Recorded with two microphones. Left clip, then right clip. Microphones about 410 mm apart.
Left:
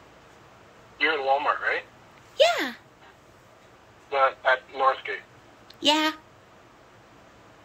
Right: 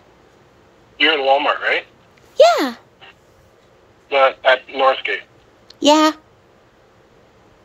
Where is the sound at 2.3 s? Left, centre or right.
Centre.